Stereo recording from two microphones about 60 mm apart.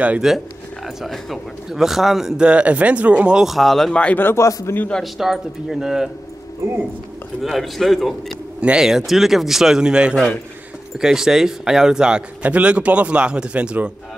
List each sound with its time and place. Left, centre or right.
0.2 s speech: centre
3.4 s speech: centre
3.9 s speech: centre
4.4 s a man's voice: left
5.0 s speech: centre
7.4 s speech: centre
8.5 s speech: centre
12.4 s speech: right